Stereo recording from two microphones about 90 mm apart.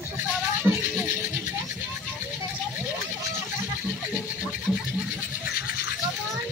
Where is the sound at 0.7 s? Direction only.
10° left (ahead or behind).